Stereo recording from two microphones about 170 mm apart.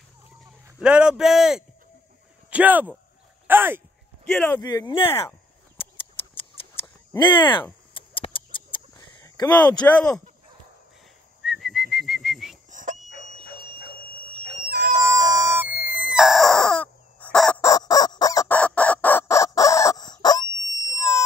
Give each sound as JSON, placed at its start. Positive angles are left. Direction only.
{"t": 0.7, "sound": "speech", "side_deg": -5}
{"t": 4.3, "sound": "speech", "side_deg": 5}
{"t": 4.6, "sound": "speech", "side_deg": 25}
{"t": 7.2, "sound": "speech", "side_deg": 25}
{"t": 8.2, "sound": "a sound", "side_deg": 30}
{"t": 9.8, "sound": "speech", "side_deg": 15}
{"t": 11.4, "sound": "whistling", "side_deg": 0}
{"t": 12.7, "sound": "a sound", "side_deg": -50}
{"t": 15.0, "sound": "music", "side_deg": -20}
{"t": 17.6, "sound": "fowl", "side_deg": 20}
{"t": 18.5, "sound": "chicken", "side_deg": 5}
{"t": 20.7, "sound": "a sound", "side_deg": 20}